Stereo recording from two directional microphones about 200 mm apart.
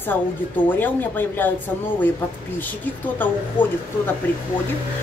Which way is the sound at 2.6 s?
10° left (ahead or behind).